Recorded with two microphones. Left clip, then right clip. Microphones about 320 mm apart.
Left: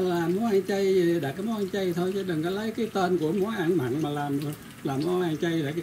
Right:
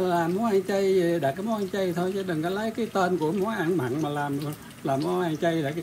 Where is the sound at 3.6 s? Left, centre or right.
Right.